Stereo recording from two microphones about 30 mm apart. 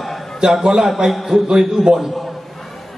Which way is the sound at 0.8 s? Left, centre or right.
Centre.